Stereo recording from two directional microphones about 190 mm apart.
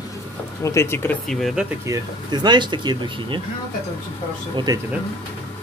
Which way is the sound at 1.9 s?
20° right (ahead or behind).